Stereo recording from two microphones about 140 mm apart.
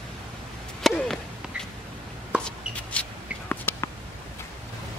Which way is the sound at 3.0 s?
10° left (ahead or behind).